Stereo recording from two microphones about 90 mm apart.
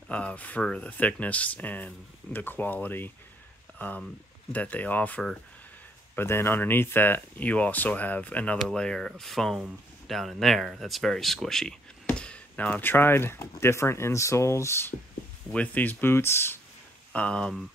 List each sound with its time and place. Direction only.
0.1 s speech: 15° left (ahead or behind)
6.1 s speech: 25° left (ahead or behind)
15.5 s speech: 15° left (ahead or behind)
17.1 s speech: 10° left (ahead or behind)